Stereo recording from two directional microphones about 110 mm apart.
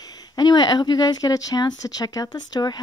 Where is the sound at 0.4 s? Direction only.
40° left (ahead or behind).